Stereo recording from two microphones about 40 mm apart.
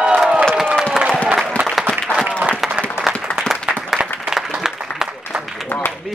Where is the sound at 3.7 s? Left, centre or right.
Right.